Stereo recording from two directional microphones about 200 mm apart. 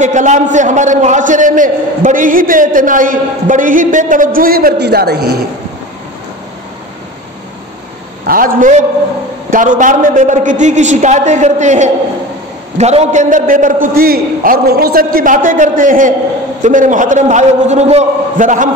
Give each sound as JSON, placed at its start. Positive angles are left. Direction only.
{"t": 0.0, "sound": "a man's voice", "side_deg": -35}
{"t": 8.3, "sound": "a man's voice", "side_deg": -45}